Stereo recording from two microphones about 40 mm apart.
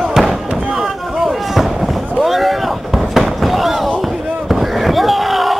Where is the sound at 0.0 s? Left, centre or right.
Centre.